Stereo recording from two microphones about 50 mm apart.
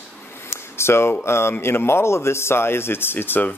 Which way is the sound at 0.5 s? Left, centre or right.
Left.